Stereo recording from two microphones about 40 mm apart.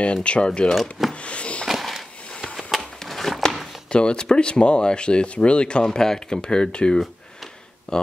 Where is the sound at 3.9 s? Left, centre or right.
Left.